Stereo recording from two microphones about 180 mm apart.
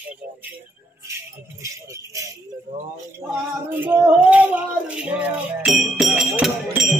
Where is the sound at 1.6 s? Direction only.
15° right (ahead or behind).